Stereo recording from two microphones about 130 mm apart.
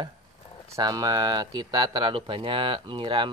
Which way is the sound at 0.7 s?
30° right (ahead or behind).